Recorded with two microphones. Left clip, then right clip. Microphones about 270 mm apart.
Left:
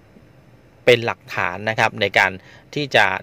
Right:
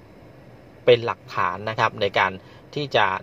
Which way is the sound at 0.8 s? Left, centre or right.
Left.